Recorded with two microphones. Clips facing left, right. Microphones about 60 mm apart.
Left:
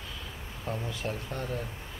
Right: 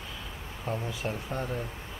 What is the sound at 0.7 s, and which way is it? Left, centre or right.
Speech, centre.